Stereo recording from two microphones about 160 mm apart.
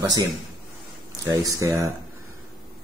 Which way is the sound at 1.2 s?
20° right (ahead or behind).